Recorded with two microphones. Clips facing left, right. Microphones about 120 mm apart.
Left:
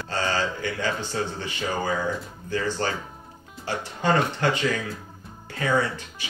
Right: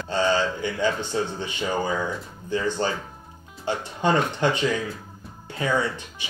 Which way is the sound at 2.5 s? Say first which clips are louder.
Right 2 dB; 20° right (ahead or behind).